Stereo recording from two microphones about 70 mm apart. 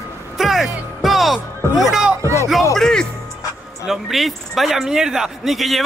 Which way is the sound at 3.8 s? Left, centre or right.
Centre.